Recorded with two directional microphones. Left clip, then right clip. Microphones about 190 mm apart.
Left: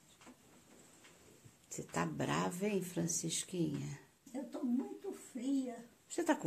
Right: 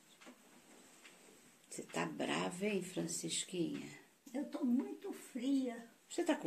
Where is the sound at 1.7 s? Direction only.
10° left (ahead or behind).